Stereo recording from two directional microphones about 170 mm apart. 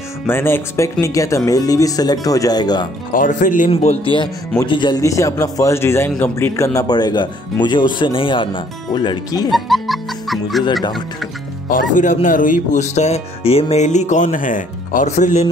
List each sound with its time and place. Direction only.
0.3 s a man's voice: 15° left (ahead or behind)
3.1 s speech: 50° left (ahead or behind)
3.7 s a man's voice: 35° left (ahead or behind)
9.5 s music: centre (ahead or behind)
10.6 s a man's voice: 25° left (ahead or behind)
11.7 s speech: 50° left (ahead or behind)